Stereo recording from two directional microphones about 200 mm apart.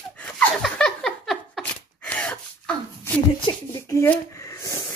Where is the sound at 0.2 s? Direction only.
5° left (ahead or behind).